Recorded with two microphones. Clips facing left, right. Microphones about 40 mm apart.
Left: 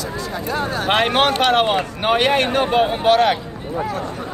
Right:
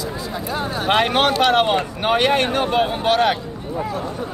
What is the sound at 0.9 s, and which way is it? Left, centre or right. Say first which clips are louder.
Speech: even; centre.